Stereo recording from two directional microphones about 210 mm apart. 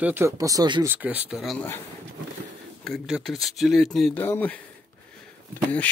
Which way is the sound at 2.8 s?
Centre (ahead or behind).